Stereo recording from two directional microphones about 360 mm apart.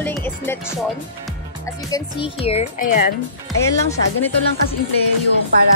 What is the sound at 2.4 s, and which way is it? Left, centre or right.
Speech, centre.